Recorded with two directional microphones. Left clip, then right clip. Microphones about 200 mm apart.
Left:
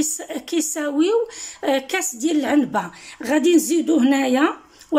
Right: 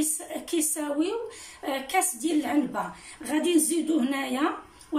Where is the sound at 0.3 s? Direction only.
45° left (ahead or behind).